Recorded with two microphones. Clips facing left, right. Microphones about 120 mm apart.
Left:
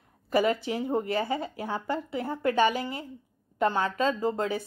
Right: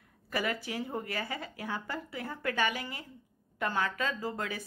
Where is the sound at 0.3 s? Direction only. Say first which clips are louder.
Left 9 dB; 25° left (ahead or behind).